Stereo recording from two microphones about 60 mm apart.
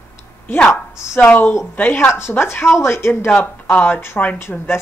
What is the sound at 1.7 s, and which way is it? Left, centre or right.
Speech, left.